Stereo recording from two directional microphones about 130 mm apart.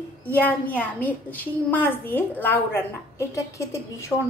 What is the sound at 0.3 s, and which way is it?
A woman's voice, 10° left (ahead or behind).